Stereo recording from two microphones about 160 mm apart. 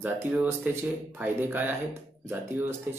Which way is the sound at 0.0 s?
10° right (ahead or behind).